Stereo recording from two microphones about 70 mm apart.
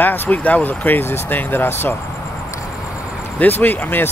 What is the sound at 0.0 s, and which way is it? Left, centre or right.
Speech, left.